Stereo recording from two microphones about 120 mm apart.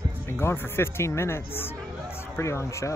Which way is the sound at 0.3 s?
20° left (ahead or behind).